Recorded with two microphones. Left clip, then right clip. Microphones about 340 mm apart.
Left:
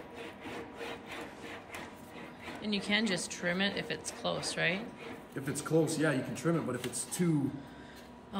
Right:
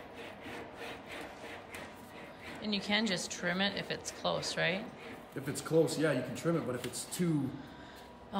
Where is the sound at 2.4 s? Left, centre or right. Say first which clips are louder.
Left 1 dB; centre.